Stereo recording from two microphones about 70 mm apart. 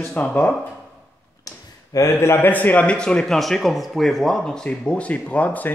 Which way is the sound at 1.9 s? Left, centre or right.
Left.